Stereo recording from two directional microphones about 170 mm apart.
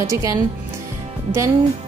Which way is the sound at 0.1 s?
20° right (ahead or behind).